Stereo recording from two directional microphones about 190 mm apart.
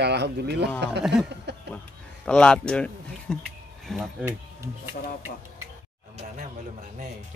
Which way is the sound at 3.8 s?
Centre (ahead or behind).